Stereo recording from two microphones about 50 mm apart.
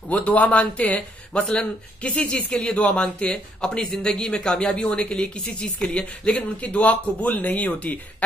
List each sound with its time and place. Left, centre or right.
0.1 s speech: left
1.4 s speech: centre; by 8.0 s left